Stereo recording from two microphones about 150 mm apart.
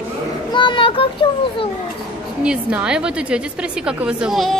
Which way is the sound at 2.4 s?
10° right (ahead or behind).